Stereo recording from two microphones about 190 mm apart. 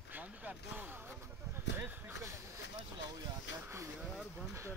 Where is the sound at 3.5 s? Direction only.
70° left (ahead or behind).